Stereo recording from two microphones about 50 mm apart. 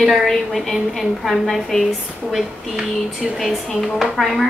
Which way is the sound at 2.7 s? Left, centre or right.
Centre.